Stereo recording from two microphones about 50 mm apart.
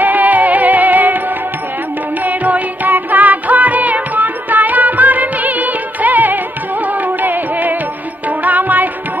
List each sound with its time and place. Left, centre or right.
0.0 s music: right
2.2 s music: right